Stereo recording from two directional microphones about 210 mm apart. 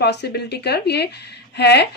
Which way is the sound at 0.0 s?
55° left (ahead or behind).